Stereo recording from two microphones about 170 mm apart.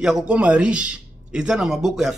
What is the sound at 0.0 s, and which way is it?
A man's voice, 5° right (ahead or behind).